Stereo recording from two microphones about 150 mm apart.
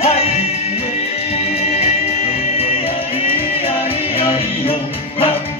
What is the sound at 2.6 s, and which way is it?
Music, 40° left (ahead or behind).